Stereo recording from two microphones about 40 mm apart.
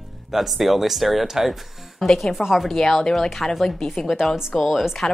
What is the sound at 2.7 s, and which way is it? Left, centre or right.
Speech, centre.